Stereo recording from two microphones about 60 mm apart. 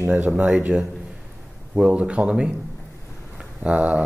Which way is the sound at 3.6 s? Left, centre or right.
Right.